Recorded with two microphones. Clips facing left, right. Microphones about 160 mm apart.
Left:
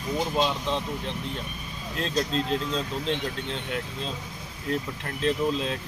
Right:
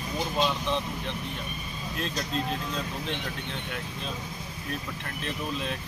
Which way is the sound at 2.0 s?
25° left (ahead or behind).